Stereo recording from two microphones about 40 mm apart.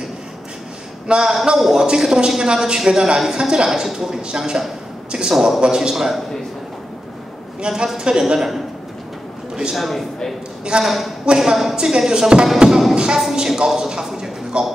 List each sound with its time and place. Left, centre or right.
1.0 s a man's voice: right
7.6 s a woman's voice: centre
9.8 s a man's voice: centre
10.6 s a woman's voice: right
10.9 s a man's voice: centre; by 12.4 s right
12.5 s speech: centre
14.5 s a woman's voice: right